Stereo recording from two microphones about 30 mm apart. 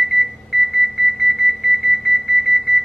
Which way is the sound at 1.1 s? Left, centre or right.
Centre.